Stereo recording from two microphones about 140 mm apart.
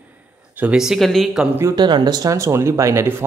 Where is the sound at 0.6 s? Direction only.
5° right (ahead or behind).